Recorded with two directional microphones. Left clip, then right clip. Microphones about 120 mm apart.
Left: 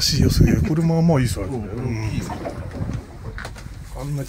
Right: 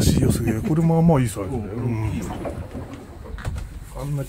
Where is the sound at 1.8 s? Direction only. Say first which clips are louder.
Even; 20° right (ahead or behind).